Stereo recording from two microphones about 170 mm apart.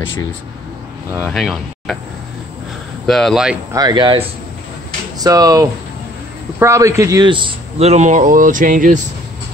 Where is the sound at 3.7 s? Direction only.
25° right (ahead or behind); by 9.0 s 55° right (ahead or behind).